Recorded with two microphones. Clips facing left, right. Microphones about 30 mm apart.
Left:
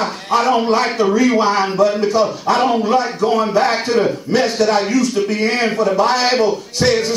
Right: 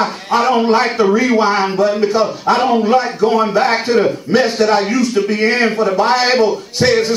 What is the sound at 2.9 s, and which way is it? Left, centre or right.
Speech, centre.